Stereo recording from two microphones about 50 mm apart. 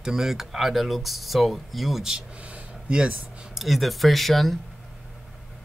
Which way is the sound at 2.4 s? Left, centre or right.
Right.